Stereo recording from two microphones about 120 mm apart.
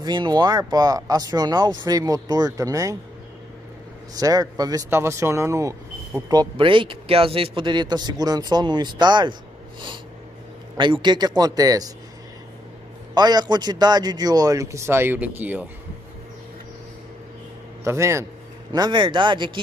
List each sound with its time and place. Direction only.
0.0 s speech: 35° right (ahead or behind)
4.1 s speech: 30° right (ahead or behind)
6.5 s speech: 45° right (ahead or behind)
10.8 s speech: 40° right (ahead or behind)
13.1 s speech: 35° right (ahead or behind); by 15.6 s 15° right (ahead or behind)
17.8 s speech: 25° right (ahead or behind)
18.7 s speech: 40° right (ahead or behind)